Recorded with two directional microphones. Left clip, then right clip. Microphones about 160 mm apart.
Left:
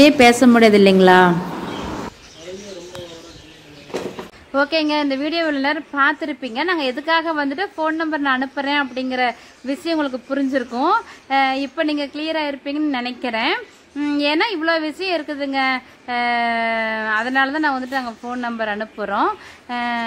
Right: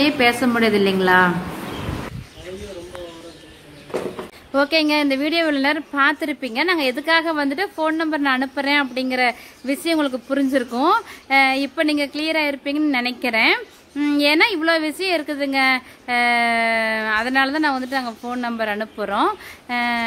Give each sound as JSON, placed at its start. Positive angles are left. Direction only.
{"t": 0.0, "sound": "a woman's voice", "side_deg": 25}
{"t": 4.5, "sound": "a woman's voice", "side_deg": 0}